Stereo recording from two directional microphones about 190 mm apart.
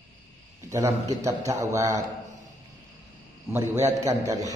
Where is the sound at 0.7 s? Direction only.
15° right (ahead or behind).